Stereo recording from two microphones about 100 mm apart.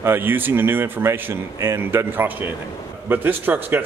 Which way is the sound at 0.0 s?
20° right (ahead or behind).